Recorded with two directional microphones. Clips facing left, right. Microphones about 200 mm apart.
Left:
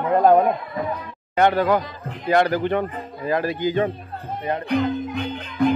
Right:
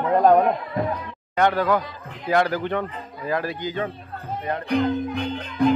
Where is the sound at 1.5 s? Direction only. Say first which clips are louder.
Left 2 dB; 30° left (ahead or behind).